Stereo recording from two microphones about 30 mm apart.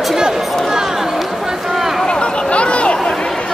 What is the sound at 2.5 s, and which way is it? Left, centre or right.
Chatter, left.